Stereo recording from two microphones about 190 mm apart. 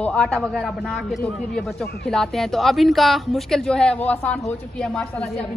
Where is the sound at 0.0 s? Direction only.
5° left (ahead or behind).